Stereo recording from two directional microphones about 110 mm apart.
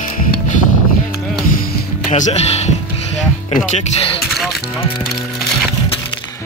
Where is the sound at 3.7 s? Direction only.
85° left.